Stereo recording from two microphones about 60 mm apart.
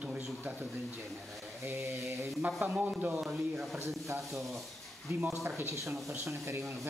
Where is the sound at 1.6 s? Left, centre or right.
Right.